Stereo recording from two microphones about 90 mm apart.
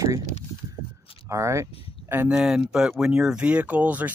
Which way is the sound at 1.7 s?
90° left.